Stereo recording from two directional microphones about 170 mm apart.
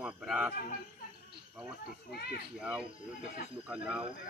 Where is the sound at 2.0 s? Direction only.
70° left (ahead or behind).